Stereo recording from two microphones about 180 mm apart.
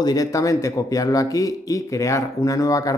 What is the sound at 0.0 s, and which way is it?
Speech, 20° left (ahead or behind).